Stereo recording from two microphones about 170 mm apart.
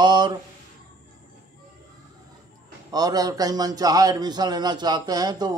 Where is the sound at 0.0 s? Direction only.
25° right (ahead or behind).